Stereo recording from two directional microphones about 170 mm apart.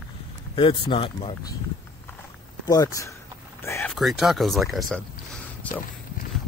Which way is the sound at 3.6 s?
15° left (ahead or behind).